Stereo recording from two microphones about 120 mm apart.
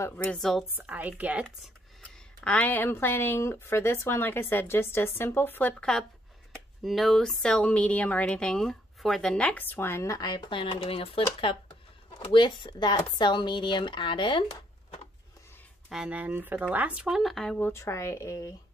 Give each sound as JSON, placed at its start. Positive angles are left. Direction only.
{"t": 0.0, "sound": "a woman's voice", "side_deg": 15}
{"t": 0.4, "sound": "speech", "side_deg": 0}
{"t": 0.7, "sound": "speech", "side_deg": -15}
{"t": 2.0, "sound": "a woman's voice", "side_deg": 10}
{"t": 12.1, "sound": "speech", "side_deg": 40}
{"t": 15.9, "sound": "speech", "side_deg": -10}
{"t": 17.6, "sound": "speech", "side_deg": 20}